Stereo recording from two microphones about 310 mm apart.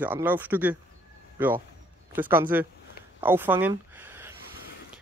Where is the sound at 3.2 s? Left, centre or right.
Centre.